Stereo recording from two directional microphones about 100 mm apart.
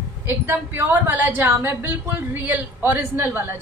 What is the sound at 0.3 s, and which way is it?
A woman's voice, 20° right (ahead or behind).